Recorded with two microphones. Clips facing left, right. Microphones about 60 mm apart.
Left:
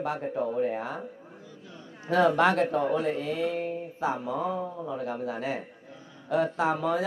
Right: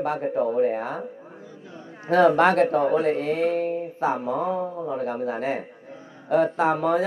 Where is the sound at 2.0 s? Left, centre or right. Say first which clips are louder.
Right 5 dB; right.